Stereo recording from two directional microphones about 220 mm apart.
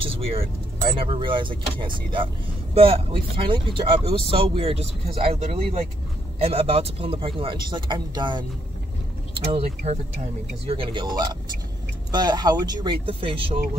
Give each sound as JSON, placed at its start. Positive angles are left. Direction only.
{"t": 0.0, "sound": "speech", "side_deg": -25}
{"t": 9.5, "sound": "speech", "side_deg": -25}